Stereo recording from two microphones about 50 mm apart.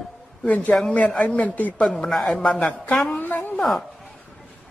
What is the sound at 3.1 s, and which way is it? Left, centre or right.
Speech, left.